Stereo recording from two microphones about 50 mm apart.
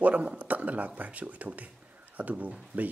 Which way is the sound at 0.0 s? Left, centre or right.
Right.